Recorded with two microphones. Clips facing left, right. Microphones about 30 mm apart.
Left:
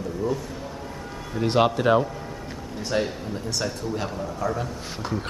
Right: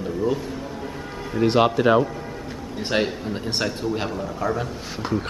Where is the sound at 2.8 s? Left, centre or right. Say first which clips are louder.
Right 3 dB; right.